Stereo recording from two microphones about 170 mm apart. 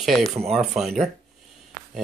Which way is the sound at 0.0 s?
Centre (ahead or behind).